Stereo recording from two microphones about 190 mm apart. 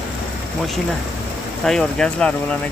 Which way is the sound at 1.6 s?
5° left (ahead or behind).